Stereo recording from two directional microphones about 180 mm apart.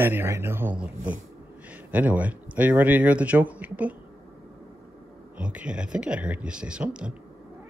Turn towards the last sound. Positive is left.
turn(degrees=-5)  # may be behind; listen again after turning